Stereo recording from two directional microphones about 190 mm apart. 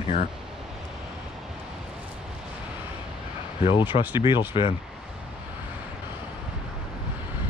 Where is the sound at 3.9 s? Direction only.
45° left (ahead or behind).